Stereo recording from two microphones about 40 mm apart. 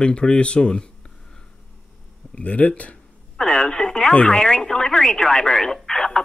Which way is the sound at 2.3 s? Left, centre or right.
Left.